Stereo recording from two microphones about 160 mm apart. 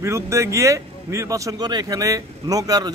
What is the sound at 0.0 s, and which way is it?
Speech, 20° right (ahead or behind).